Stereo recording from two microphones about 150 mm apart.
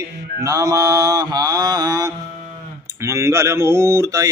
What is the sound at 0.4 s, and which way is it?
Mantra, 20° right (ahead or behind).